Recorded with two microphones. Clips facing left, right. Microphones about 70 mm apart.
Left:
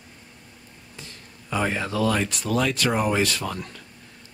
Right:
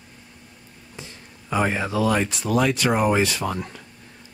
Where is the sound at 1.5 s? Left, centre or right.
Centre.